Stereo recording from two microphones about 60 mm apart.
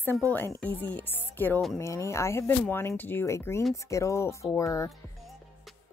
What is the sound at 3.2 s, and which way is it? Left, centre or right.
Speech, left.